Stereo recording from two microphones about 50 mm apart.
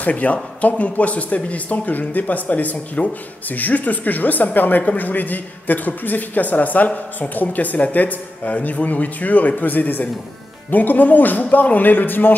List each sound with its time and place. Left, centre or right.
0.0 s speech: left